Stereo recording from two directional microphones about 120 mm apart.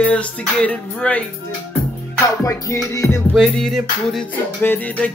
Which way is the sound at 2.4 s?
25° left (ahead or behind).